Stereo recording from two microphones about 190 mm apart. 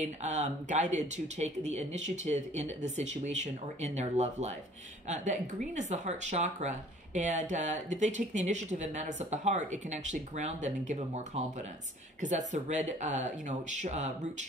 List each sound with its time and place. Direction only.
0.0 s speech: 40° right (ahead or behind)